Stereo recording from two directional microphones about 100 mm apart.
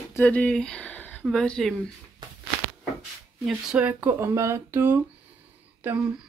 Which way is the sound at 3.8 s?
20° right (ahead or behind).